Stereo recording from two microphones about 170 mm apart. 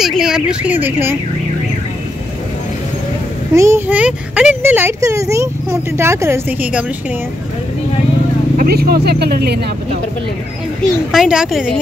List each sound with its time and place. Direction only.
0.0 s speech: 5° right (ahead or behind)
3.5 s speech: 15° right (ahead or behind)
8.5 s speech: 65° right (ahead or behind)
11.1 s speech: 5° right (ahead or behind)